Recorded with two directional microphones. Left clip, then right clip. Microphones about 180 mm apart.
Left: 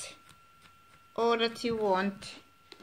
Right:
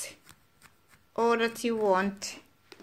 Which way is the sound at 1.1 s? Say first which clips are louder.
Right 2 dB; 20° right (ahead or behind).